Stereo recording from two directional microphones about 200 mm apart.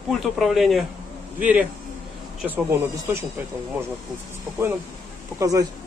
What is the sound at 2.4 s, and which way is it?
Speech, 10° right (ahead or behind).